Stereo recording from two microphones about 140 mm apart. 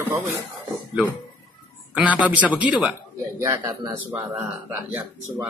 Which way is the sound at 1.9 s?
10° right (ahead or behind).